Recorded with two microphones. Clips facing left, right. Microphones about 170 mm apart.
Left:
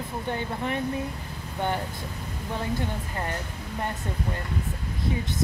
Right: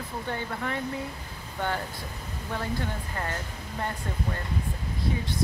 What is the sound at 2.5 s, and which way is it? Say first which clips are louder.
Speech: left 2 dB; 15° left (ahead or behind).